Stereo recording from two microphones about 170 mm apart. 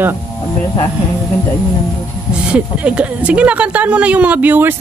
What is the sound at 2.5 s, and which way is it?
Speech, 5° right (ahead or behind).